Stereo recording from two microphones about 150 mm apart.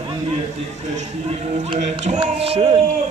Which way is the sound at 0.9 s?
45° right (ahead or behind).